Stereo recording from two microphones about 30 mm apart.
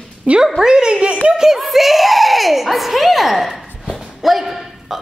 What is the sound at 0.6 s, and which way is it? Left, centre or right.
Speech, right.